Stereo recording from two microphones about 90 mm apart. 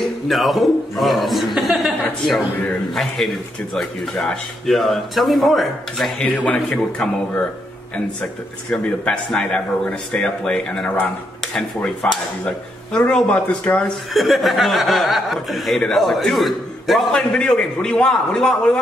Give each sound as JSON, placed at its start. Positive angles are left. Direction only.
{"t": 0.3, "sound": "speech", "side_deg": 0}
{"t": 6.3, "sound": "a man's voice", "side_deg": 15}
{"t": 7.9, "sound": "a man's voice", "side_deg": 15}
{"t": 14.1, "sound": "speech", "side_deg": 0}
{"t": 17.1, "sound": "a man's voice", "side_deg": 10}